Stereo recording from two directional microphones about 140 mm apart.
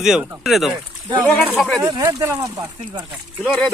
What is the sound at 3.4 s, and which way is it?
Speech, 5° left (ahead or behind).